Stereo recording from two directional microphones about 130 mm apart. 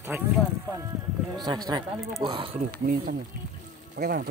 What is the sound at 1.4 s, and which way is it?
Speech, 35° right (ahead or behind).